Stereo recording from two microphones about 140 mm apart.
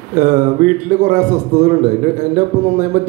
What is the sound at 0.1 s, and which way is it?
A man's voice, 60° right (ahead or behind).